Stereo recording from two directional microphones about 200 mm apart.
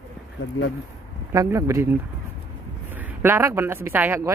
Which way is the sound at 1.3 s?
15° right (ahead or behind).